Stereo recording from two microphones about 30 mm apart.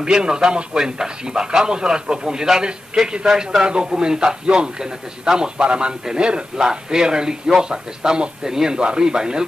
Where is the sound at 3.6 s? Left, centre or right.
Right.